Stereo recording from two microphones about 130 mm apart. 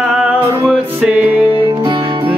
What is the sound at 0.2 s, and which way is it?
Music, 5° right (ahead or behind).